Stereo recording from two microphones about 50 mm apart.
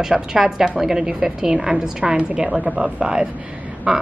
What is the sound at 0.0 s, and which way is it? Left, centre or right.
A woman's voice, centre.